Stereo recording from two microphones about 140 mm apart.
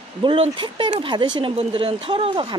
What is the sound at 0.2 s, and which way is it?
Speech, 35° right (ahead or behind).